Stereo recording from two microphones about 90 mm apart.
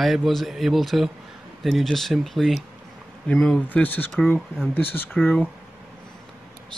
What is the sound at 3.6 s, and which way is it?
Speech, 20° left (ahead or behind).